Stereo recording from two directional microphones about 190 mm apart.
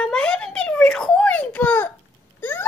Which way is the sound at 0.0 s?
5° left (ahead or behind).